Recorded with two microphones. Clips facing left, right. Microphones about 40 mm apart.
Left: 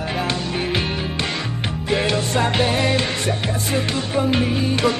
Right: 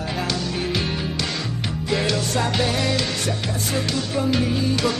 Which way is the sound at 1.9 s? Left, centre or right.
Left.